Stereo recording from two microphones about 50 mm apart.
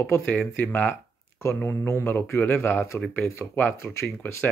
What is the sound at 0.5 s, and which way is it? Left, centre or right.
Speech, left.